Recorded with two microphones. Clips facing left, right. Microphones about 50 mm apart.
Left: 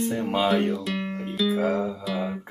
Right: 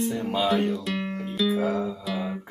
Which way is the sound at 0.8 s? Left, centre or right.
Centre.